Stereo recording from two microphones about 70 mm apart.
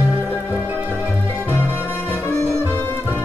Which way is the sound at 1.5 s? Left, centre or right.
Left.